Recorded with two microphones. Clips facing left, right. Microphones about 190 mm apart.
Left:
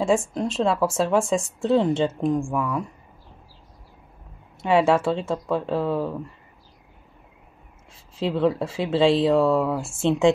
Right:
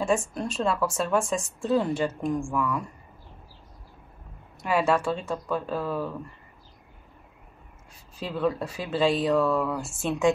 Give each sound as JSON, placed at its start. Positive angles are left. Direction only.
{"t": 0.4, "sound": "speech", "side_deg": 25}
{"t": 4.6, "sound": "speech", "side_deg": 25}
{"t": 7.9, "sound": "speech", "side_deg": 25}